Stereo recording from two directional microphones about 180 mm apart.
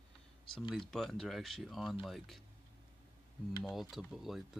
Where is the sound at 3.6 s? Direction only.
Centre (ahead or behind).